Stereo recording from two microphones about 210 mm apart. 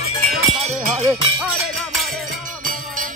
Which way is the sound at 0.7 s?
30° right (ahead or behind).